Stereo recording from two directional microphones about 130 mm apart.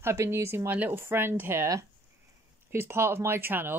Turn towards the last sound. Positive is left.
turn(degrees=-20)  # may be behind; listen again after turning